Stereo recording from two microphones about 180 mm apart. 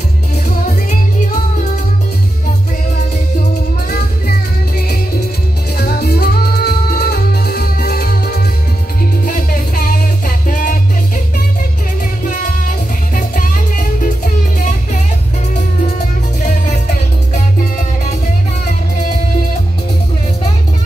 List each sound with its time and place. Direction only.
3.9 s music: 60° left (ahead or behind)
12.3 s music: 50° left (ahead or behind)
16.4 s music: 45° left (ahead or behind)